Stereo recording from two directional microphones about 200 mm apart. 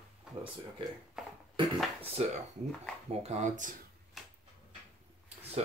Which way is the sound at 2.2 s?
30° right (ahead or behind).